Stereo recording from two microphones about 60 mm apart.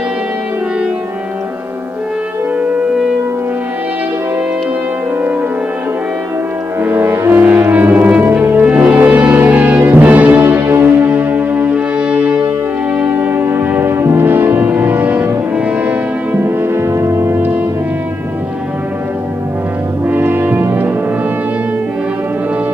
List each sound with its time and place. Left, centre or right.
6.8 s music: right
8.6 s music: centre; by 17.4 s right
20.1 s brass instrument: right